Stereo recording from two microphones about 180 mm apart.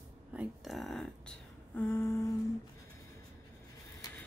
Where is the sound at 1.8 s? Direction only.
10° left (ahead or behind).